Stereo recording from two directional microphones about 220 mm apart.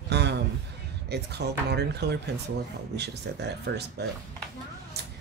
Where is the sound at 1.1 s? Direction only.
50° right (ahead or behind).